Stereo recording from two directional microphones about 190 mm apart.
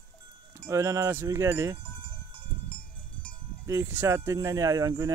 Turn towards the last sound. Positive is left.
turn(degrees=-20)  # may be behind; listen again after turning